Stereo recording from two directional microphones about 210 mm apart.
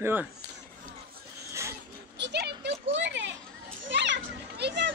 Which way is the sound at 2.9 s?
60° right (ahead or behind).